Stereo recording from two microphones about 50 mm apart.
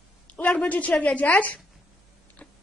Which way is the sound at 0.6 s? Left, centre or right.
Left.